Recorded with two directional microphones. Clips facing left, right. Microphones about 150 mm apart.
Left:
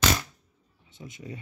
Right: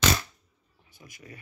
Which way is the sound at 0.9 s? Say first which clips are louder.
Left 7 dB; 25° left (ahead or behind).